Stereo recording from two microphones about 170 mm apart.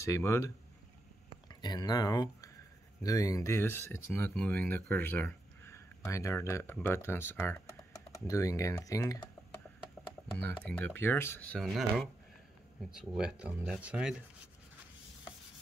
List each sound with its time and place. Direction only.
0.0 s speech: 15° left (ahead or behind)
1.5 s speech: 25° left (ahead or behind)
10.4 s speech: 10° left (ahead or behind)